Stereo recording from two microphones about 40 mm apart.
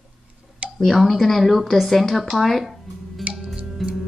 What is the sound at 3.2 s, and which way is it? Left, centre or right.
Music, centre.